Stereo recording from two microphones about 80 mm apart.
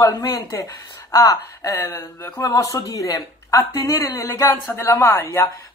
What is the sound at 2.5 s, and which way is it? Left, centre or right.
Speech, left.